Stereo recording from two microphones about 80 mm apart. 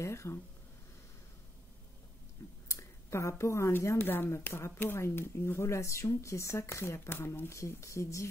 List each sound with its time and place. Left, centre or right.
0.0 s speech: left
2.7 s speech: left